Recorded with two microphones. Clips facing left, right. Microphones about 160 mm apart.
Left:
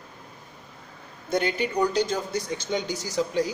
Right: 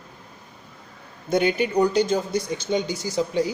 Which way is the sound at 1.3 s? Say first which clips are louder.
Right 5 dB; 20° right (ahead or behind).